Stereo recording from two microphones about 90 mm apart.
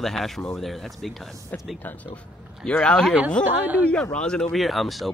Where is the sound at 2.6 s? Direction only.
10° left (ahead or behind).